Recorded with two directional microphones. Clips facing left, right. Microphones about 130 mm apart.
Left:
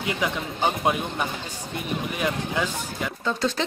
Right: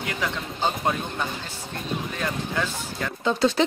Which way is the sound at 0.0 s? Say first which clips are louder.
Left 2 dB; 20° left (ahead or behind).